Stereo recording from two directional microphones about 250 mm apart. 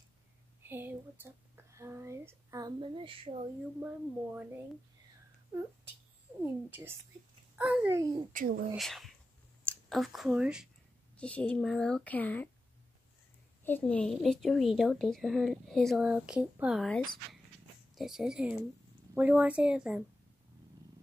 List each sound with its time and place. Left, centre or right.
0.6 s speech: centre
3.8 s speech: centre
6.4 s speech: centre
8.3 s speech: right
8.7 s a woman's voice: centre
13.7 s a woman's voice: centre